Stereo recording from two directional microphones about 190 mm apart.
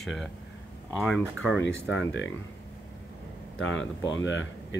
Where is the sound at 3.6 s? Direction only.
80° left.